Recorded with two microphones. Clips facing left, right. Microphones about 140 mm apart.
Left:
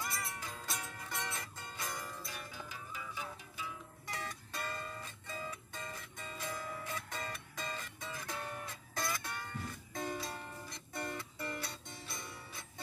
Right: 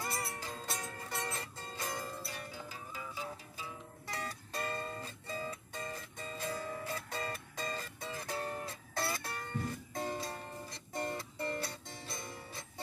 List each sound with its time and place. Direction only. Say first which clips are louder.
0.0 s music: right 3 dB; 30° right (ahead or behind)